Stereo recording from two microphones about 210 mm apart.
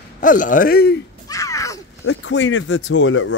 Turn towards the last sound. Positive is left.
turn(degrees=70)  # may be behind; listen again after turning